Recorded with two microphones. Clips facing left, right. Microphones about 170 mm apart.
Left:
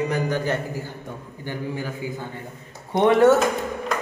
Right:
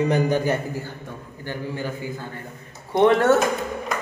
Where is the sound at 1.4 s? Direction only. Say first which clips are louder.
Even; 10° left (ahead or behind).